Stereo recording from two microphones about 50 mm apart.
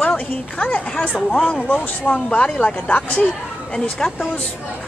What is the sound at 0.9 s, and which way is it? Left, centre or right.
Speech, centre.